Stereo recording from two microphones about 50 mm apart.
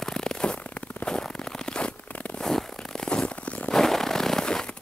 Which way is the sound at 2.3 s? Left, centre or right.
Centre.